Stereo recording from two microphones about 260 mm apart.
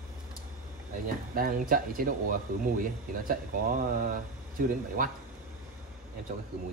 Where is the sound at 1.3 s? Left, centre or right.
Right.